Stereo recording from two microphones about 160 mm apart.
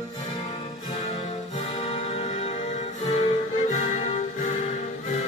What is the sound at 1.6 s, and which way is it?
Music, 40° left (ahead or behind).